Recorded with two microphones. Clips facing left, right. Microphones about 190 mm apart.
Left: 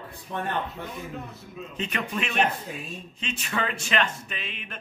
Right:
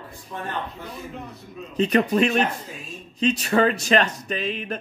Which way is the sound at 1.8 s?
35° right (ahead or behind).